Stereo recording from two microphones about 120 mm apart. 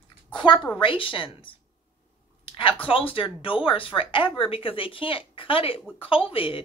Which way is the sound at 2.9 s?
50° left (ahead or behind).